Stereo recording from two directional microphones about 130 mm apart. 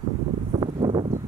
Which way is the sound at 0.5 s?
40° right (ahead or behind).